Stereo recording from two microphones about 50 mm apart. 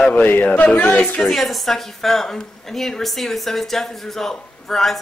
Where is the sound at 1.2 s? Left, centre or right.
Centre.